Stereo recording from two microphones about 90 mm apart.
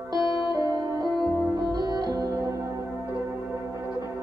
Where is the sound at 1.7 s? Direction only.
50° right (ahead or behind).